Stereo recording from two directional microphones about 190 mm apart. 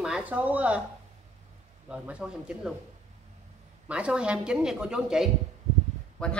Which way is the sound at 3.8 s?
5° right (ahead or behind).